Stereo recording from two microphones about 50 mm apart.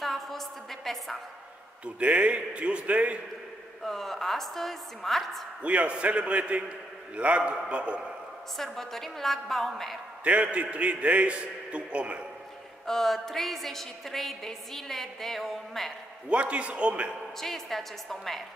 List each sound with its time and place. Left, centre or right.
0.0 s a sound: centre
2.0 s a man's voice: right
3.8 s a woman's voice: centre
5.6 s a man's voice: right
8.5 s a woman's voice: centre
10.2 s a man's voice: right
12.8 s a woman's voice: centre
16.3 s a man's voice: right
17.4 s a woman's voice: centre